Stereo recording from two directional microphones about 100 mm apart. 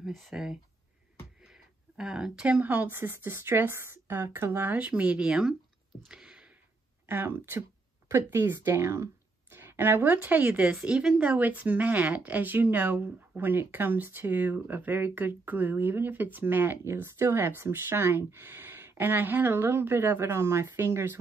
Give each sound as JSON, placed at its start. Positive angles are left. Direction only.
{"t": 0.0, "sound": "speech", "side_deg": 0}
{"t": 6.0, "sound": "a sound", "side_deg": -5}
{"t": 7.1, "sound": "speech", "side_deg": -25}